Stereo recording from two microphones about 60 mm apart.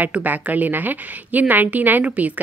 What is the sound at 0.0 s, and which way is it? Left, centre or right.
A woman's voice, right.